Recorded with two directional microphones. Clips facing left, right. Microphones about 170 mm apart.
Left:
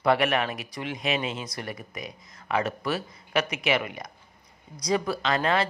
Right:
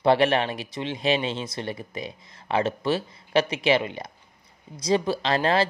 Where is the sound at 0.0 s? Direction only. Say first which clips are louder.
Right 3 dB; 30° right (ahead or behind).